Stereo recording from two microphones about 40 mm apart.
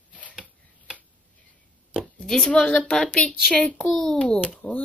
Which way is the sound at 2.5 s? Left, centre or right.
Left.